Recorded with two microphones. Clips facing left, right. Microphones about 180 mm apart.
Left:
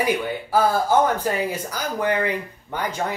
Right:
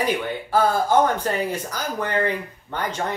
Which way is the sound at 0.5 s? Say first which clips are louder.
Even; 10° left (ahead or behind).